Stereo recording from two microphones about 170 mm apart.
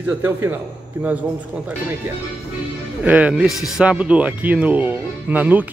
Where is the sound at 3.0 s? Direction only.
10° right (ahead or behind).